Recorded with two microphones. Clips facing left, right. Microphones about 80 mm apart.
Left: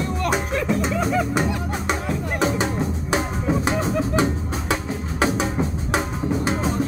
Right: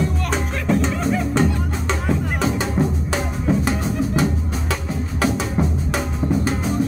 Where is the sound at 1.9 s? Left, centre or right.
Left.